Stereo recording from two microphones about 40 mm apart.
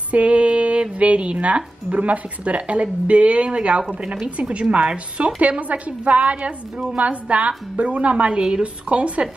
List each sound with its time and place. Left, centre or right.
0.1 s a woman's voice: right